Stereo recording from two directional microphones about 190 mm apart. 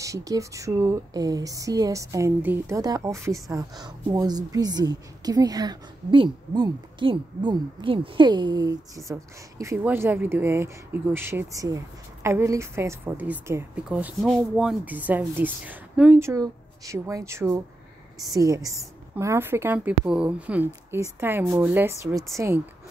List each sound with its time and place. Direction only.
0.0 s a woman's voice: 15° right (ahead or behind)